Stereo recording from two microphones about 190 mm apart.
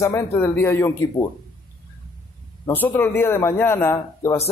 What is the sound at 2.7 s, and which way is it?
A man's voice, 10° left (ahead or behind).